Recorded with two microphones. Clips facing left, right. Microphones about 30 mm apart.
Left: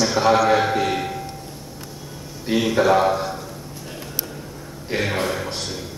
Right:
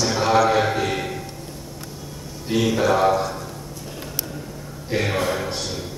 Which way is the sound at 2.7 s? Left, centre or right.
Centre.